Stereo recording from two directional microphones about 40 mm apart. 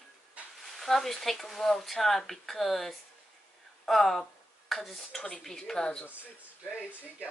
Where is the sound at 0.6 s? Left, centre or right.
Centre.